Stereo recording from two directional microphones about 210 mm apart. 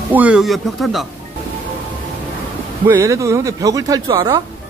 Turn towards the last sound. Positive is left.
turn(degrees=-20)  # may be behind; listen again after turning